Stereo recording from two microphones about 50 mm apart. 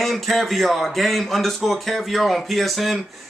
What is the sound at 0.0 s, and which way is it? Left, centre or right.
Speech, centre.